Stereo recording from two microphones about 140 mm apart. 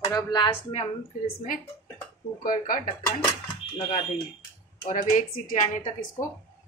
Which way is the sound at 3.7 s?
45° left (ahead or behind).